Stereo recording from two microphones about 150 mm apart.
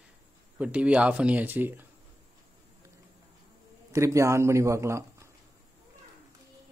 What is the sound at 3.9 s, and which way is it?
A man's voice, 20° right (ahead or behind).